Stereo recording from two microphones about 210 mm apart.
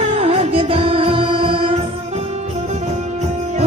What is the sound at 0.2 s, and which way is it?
Music, 25° right (ahead or behind).